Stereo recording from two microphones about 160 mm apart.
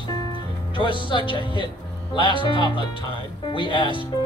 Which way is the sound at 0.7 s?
30° left (ahead or behind).